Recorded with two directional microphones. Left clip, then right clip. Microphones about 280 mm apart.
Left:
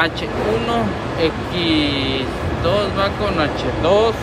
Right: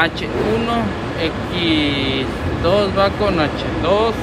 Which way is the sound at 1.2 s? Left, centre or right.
Centre.